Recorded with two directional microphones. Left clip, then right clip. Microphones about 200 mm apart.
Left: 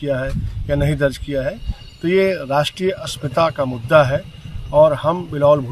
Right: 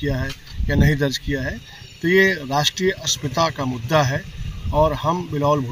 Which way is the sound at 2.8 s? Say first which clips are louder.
Right 1 dB; 30° left (ahead or behind).